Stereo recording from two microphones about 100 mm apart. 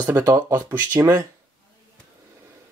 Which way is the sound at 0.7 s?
20° right (ahead or behind).